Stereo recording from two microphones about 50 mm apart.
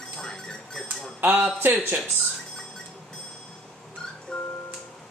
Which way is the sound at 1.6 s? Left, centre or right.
Right.